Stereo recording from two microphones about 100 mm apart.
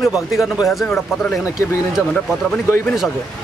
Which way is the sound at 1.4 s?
30° left (ahead or behind).